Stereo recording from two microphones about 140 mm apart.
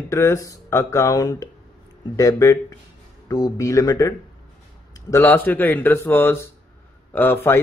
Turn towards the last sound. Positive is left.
turn(degrees=15)  # may be behind; listen again after turning